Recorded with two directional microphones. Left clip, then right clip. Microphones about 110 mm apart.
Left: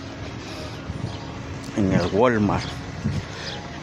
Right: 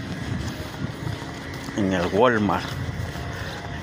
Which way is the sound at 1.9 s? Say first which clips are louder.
Even; 20° left (ahead or behind).